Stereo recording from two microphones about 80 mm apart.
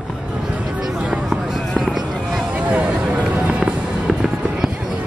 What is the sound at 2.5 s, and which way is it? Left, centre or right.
Music, centre.